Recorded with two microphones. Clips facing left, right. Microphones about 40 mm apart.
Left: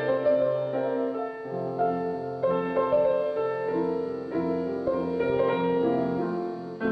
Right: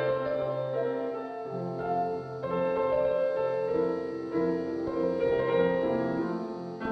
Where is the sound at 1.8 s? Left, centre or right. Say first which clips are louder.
Left 3 dB; centre.